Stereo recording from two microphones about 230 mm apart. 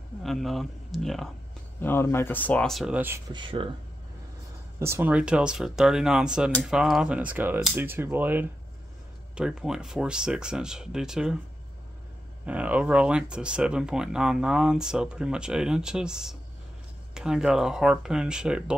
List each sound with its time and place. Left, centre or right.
0.2 s speech: centre
3.3 s speech: right
4.7 s speech: centre
12.4 s speech: centre